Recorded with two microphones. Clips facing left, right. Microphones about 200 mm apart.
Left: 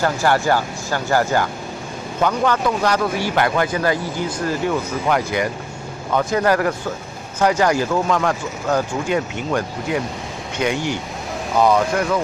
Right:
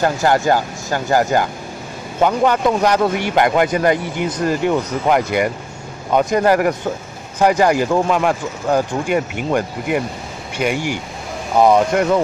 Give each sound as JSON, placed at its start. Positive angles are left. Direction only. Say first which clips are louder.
{"t": 0.0, "sound": "a man's voice", "louder": "right 2 dB", "side_deg": -20}